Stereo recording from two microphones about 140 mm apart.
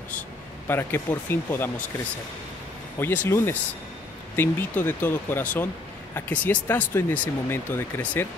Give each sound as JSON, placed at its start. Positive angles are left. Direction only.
{"t": 0.7, "sound": "speech", "side_deg": 15}
{"t": 3.0, "sound": "speech", "side_deg": 15}